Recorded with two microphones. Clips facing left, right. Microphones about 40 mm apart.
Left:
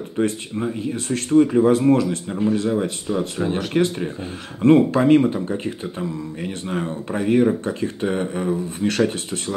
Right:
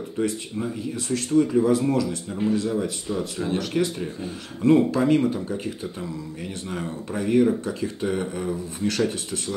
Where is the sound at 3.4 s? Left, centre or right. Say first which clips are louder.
Left 3 dB; left.